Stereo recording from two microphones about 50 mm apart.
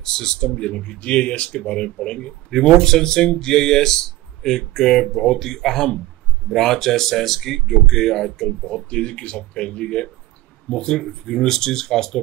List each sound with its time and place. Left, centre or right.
0.0 s speech: centre